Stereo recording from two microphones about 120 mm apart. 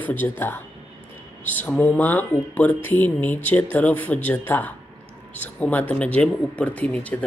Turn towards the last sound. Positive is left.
turn(degrees=10)  # may be behind; listen again after turning